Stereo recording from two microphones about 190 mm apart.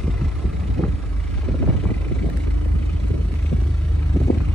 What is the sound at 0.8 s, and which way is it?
Vehicle, 35° right (ahead or behind).